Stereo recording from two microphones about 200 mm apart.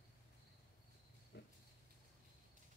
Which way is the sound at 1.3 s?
60° left (ahead or behind).